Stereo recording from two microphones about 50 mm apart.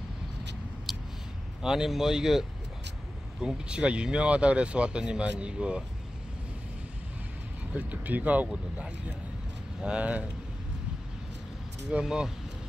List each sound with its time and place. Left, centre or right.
0.9 s a sound: centre
1.6 s speech: centre
7.7 s speech: right
9.8 s speech: right
11.9 s speech: centre